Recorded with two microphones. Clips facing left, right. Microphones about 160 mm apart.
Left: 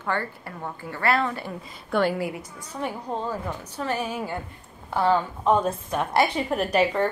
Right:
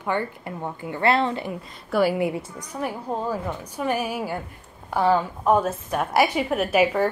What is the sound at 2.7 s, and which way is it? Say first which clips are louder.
A woman's voice: right 1 dB; 5° right (ahead or behind).